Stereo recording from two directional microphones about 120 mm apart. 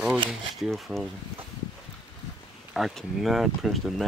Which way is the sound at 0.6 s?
Centre (ahead or behind).